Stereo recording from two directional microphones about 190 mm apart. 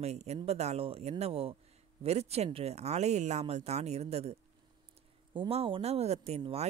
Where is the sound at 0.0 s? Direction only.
35° right (ahead or behind).